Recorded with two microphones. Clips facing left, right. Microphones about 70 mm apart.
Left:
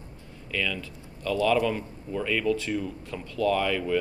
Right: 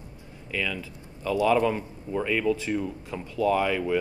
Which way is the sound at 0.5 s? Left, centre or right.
Centre.